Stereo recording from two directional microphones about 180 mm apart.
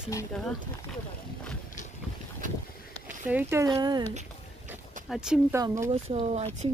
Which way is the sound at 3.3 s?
10° right (ahead or behind).